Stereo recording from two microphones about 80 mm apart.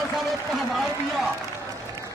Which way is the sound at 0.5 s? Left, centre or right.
Centre.